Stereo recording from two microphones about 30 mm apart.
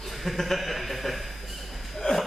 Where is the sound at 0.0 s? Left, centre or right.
Centre.